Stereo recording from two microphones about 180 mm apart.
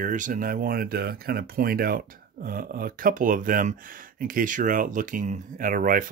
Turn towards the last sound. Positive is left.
turn(degrees=-50)  # may be behind; listen again after turning